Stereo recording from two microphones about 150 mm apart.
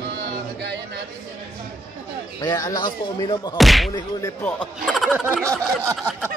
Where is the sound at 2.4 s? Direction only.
25° left (ahead or behind).